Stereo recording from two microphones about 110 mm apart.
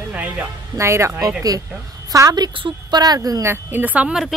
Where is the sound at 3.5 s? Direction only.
15° right (ahead or behind).